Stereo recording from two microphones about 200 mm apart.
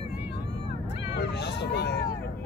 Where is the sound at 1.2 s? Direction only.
60° left (ahead or behind).